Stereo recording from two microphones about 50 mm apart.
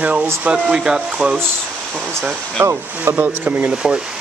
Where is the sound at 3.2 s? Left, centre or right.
Right.